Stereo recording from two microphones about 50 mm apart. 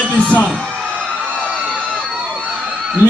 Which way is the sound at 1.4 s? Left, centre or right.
Right.